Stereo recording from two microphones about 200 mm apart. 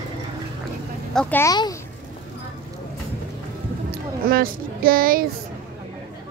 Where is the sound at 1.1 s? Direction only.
10° left (ahead or behind).